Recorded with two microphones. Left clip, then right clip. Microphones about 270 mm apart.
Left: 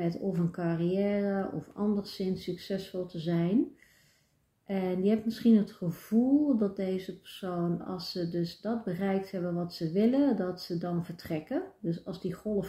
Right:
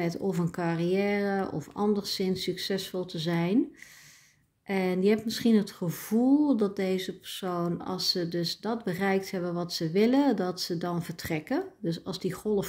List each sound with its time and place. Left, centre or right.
0.0 s speech: right
4.6 s speech: right